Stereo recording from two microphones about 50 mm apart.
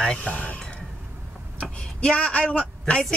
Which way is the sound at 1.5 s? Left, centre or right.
Left.